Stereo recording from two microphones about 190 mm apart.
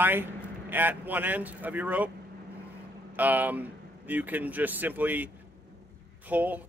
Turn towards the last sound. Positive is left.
turn(degrees=-10)  # may be behind; listen again after turning